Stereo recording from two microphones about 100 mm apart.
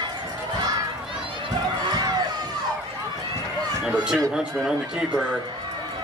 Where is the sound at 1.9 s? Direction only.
45° right (ahead or behind).